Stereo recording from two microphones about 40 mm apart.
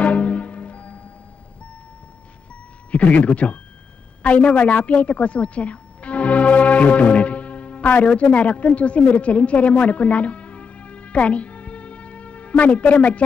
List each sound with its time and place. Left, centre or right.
0.0 s music: left
2.9 s a woman's voice: left